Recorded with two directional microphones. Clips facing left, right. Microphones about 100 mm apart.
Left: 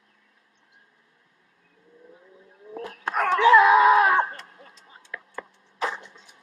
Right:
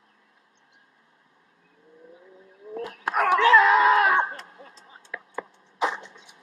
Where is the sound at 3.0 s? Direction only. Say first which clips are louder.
Right 2 dB; 5° right (ahead or behind).